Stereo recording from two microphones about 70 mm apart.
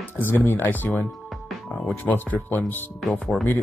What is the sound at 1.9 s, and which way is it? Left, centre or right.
Speech, left.